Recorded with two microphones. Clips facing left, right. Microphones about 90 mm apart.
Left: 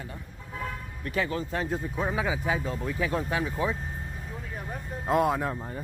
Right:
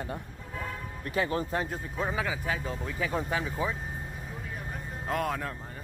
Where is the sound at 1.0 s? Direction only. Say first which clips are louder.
Even; 35° right (ahead or behind).